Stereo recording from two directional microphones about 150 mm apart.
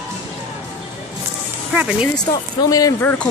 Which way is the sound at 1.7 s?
10° right (ahead or behind).